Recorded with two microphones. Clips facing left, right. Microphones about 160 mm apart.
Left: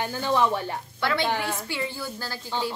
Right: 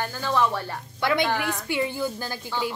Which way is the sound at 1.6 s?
15° right (ahead or behind).